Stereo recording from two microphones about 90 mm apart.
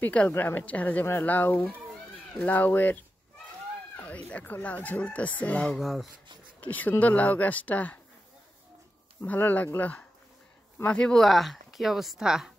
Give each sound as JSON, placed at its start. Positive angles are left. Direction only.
{"t": 0.0, "sound": "speech", "side_deg": 15}
{"t": 0.3, "sound": "a woman's voice", "side_deg": 25}
{"t": 5.8, "sound": "speech", "side_deg": 0}
{"t": 6.6, "sound": "speech", "side_deg": 20}
{"t": 9.2, "sound": "speech", "side_deg": 20}